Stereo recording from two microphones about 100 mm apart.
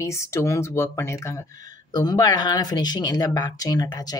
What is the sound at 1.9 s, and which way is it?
Speech, 45° left (ahead or behind).